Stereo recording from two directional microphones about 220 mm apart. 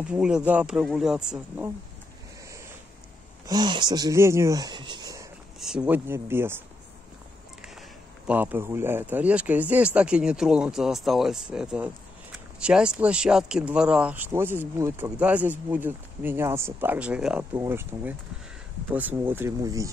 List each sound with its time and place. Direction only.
0.0 s speech: 5° right (ahead or behind)
3.4 s speech: 20° right (ahead or behind)
5.6 s speech: 5° right (ahead or behind)
8.3 s speech: 10° right (ahead or behind)